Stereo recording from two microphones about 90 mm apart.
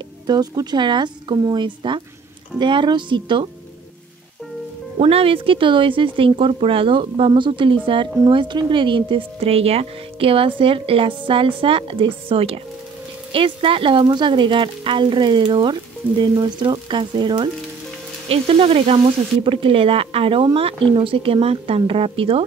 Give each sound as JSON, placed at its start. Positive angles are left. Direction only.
{"t": 0.3, "sound": "speech", "side_deg": -50}
{"t": 5.0, "sound": "speech", "side_deg": -90}
{"t": 18.3, "sound": "speech", "side_deg": -90}